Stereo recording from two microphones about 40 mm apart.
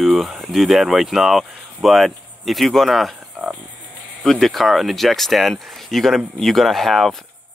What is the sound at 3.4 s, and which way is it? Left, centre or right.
Cricket, left.